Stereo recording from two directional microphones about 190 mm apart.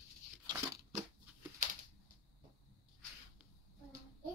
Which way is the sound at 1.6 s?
45° right (ahead or behind).